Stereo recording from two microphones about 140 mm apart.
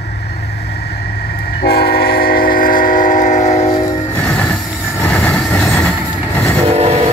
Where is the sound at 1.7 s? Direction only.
90° left; by 3.6 s 55° left (ahead or behind).